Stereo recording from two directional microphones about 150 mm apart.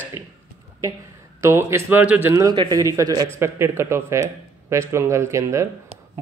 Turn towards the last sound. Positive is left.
turn(degrees=-20)  # may be behind; listen again after turning